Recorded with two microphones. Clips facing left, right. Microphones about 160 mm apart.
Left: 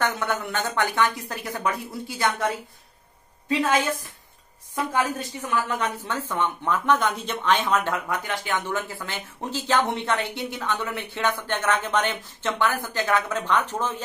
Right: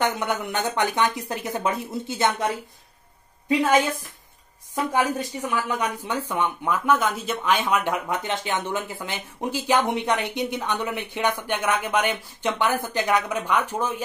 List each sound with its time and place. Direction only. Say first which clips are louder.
0.0 s speech: right 1 dB; 20° right (ahead or behind)
4.9 s speech: right 2 dB; 15° right (ahead or behind)